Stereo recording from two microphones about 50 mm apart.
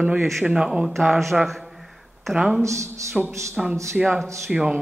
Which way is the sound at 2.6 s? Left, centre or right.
Right.